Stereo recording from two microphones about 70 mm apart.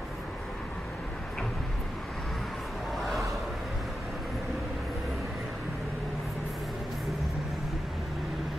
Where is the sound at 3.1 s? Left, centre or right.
Centre.